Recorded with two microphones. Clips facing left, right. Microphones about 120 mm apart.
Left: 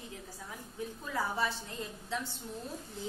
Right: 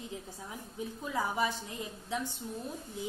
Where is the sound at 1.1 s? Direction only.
15° right (ahead or behind).